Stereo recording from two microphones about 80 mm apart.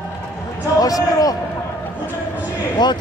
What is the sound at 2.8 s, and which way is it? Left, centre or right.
Speech, left.